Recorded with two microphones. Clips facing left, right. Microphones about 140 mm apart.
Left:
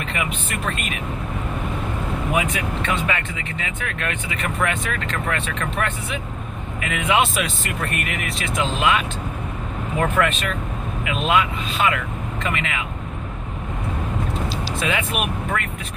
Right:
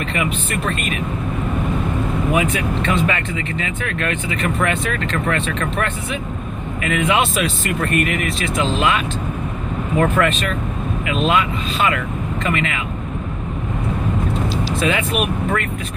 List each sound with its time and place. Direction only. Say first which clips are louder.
0.1 s speech: right 5 dB; 15° left (ahead or behind)
2.3 s speech: right 3 dB; 10° left (ahead or behind)
14.9 s speech: right 3 dB; 10° left (ahead or behind)